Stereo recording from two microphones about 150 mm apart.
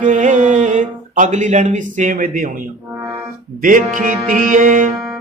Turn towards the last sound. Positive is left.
turn(degrees=-60)  # may be behind; listen again after turning